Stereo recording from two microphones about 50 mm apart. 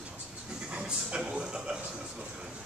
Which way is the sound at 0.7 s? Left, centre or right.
Centre.